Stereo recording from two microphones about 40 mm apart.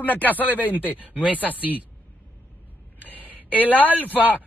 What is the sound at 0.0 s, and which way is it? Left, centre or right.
Speech, left.